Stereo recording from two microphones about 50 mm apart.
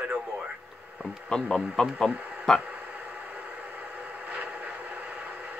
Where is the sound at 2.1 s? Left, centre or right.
Right.